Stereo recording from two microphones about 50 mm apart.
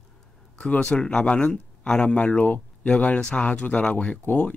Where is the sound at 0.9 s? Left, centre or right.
Centre.